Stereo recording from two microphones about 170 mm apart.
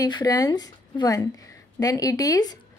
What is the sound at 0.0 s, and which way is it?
A woman's voice, 20° left (ahead or behind).